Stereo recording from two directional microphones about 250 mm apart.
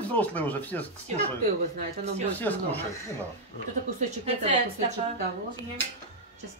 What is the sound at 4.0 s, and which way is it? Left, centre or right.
Speech, right.